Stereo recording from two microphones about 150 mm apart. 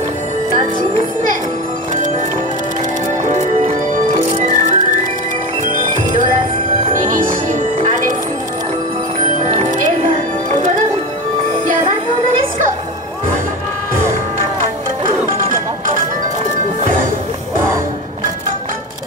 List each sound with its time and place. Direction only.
3.3 s music: 50° right (ahead or behind)
7.4 s music: 55° right (ahead or behind)
9.4 s music: 50° right (ahead or behind)